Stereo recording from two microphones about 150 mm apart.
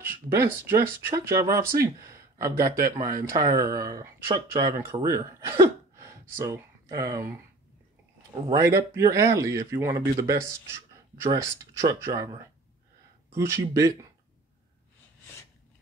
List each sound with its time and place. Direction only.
0.0 s speech: 15° right (ahead or behind)
8.5 s speech: 20° right (ahead or behind)